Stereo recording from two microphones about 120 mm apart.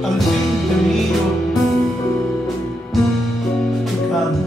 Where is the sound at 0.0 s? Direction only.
Centre (ahead or behind).